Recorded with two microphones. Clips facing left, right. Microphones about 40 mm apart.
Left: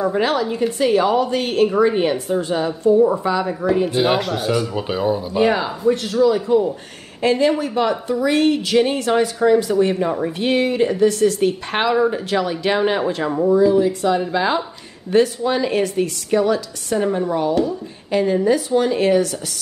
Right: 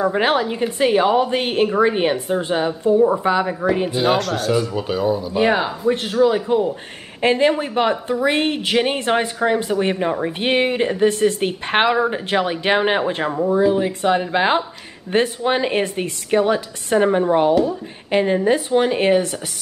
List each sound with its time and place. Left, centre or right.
0.0 s a woman's voice: right
3.9 s speech: centre
4.8 s speech: centre
5.4 s a woman's voice: centre